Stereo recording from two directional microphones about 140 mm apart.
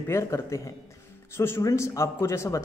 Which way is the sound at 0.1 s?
20° left (ahead or behind).